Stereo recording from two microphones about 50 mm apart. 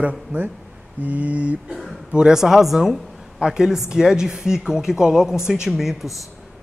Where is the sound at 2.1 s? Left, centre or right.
Centre.